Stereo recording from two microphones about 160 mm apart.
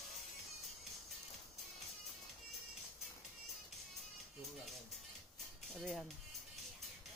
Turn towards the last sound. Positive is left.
turn(degrees=0)  # may be behind; listen again after turning